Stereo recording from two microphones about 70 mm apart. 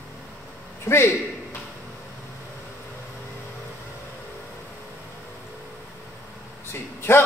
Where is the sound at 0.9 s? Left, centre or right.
Left.